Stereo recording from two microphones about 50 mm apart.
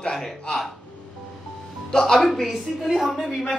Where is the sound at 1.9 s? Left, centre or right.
Centre.